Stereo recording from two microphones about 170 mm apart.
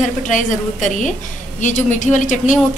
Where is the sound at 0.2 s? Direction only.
50° left (ahead or behind).